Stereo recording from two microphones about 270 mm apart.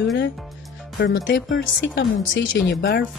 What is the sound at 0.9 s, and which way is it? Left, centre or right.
Speech, left.